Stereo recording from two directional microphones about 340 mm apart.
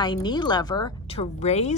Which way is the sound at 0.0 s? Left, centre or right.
Centre.